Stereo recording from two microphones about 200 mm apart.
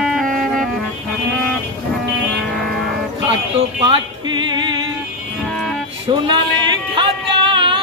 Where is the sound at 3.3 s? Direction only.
25° right (ahead or behind).